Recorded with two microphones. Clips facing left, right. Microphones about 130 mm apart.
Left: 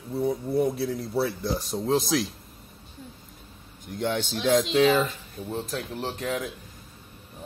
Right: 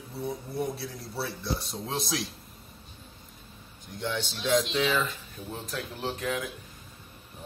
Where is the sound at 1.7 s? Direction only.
Centre (ahead or behind).